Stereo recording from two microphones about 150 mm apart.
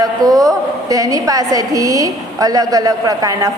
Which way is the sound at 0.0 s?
25° right (ahead or behind).